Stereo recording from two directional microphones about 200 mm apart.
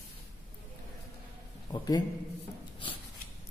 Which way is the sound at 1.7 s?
20° left (ahead or behind).